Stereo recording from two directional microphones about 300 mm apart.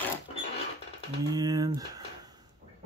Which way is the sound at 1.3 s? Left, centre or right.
Centre.